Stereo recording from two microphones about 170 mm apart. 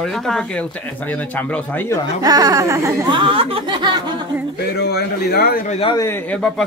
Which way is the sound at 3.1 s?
30° right (ahead or behind).